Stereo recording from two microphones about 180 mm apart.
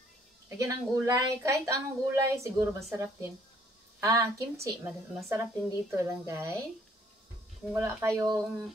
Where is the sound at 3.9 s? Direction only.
20° right (ahead or behind).